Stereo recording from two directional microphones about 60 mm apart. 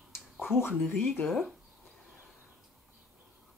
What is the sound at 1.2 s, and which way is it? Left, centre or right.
Speech, centre.